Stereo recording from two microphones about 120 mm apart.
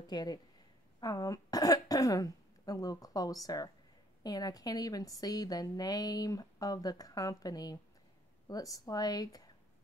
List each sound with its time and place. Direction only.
0.0 s a woman's voice: 35° left (ahead or behind)